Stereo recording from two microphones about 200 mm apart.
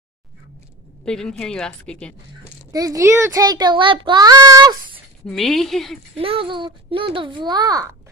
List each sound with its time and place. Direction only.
1.0 s a woman's voice: 5° left (ahead or behind)
2.7 s a child's voice: 15° right (ahead or behind)
5.2 s a woman's voice: centre (ahead or behind)
6.1 s a child's voice: 30° right (ahead or behind)